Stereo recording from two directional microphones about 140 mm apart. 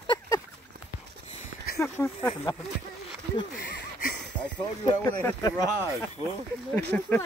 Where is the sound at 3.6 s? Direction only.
85° left.